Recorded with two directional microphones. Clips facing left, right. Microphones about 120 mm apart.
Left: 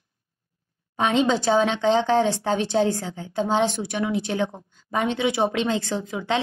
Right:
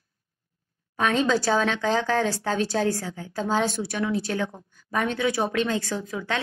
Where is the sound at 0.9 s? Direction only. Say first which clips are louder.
Left 2 dB; 20° left (ahead or behind).